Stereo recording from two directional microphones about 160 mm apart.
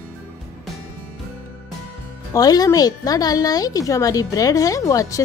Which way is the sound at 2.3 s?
25° left (ahead or behind).